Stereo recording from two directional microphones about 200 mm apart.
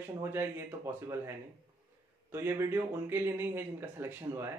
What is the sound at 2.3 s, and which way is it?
Speech, 10° right (ahead or behind).